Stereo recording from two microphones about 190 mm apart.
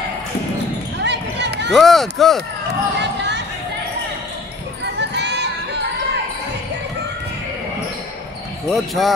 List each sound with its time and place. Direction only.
1.0 s basketball bounce: 65° right (ahead or behind)
1.7 s speech: centre (ahead or behind)
3.0 s basketball bounce: 65° right (ahead or behind)
4.9 s music: 65° right (ahead or behind)
8.6 s speech: centre (ahead or behind)